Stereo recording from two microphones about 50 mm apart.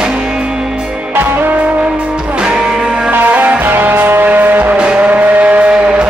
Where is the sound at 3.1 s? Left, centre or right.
Right.